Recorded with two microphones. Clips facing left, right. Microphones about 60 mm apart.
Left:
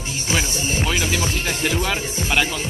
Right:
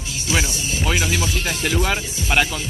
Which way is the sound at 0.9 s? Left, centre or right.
Centre.